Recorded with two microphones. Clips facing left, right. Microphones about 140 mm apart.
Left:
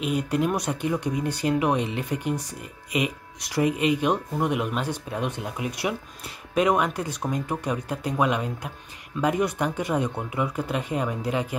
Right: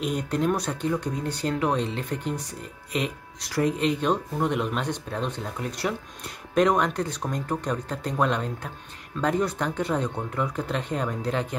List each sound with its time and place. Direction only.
0.0 s speech: 5° left (ahead or behind)